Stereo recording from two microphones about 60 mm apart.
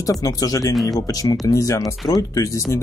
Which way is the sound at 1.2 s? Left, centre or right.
Left.